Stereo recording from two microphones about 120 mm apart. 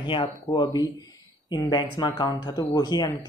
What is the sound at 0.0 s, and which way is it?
Speech, 40° left (ahead or behind).